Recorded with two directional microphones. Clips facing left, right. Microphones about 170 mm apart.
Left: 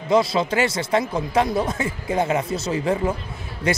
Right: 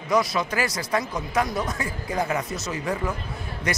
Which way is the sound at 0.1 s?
25° left (ahead or behind).